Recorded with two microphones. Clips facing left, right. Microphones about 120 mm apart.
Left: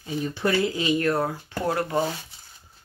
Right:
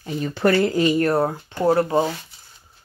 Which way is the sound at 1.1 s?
30° right (ahead or behind).